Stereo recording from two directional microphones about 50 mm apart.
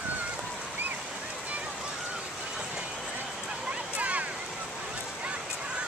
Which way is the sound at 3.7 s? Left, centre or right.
Right.